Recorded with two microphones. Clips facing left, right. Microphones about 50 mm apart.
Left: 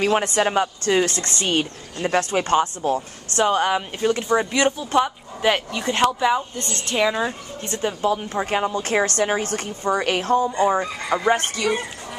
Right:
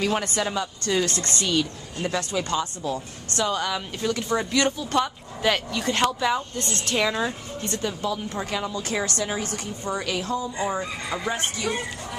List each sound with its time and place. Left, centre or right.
0.0 s a woman's voice: left
7.0 s speech: centre
7.7 s speech: left
8.5 s a woman's voice: left